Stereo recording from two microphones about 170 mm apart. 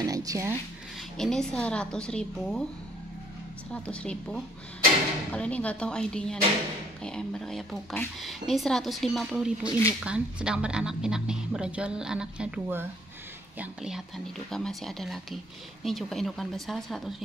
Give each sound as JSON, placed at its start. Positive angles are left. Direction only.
{"t": 0.0, "sound": "speech", "side_deg": -20}
{"t": 1.1, "sound": "a woman's voice", "side_deg": 5}
{"t": 3.7, "sound": "a woman's voice", "side_deg": 5}
{"t": 9.7, "sound": "speech", "side_deg": 20}
{"t": 10.0, "sound": "a woman's voice", "side_deg": -5}